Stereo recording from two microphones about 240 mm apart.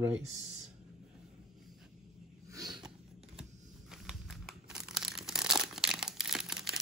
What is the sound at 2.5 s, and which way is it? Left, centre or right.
Snort, centre.